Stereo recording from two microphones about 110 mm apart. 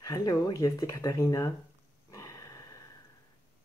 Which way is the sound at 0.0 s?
35° left (ahead or behind).